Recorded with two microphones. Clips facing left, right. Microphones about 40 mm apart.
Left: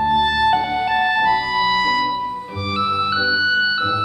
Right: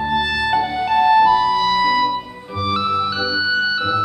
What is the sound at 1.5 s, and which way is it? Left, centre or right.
Music, centre.